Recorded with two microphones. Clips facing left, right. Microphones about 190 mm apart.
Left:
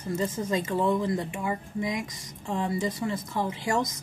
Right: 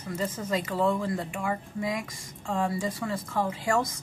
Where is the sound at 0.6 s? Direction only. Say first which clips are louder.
Left 1 dB; 25° left (ahead or behind).